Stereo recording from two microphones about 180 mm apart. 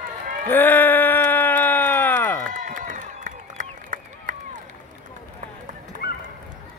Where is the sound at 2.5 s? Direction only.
45° right (ahead or behind).